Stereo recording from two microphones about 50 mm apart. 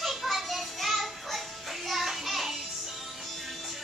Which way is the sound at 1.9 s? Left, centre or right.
Centre.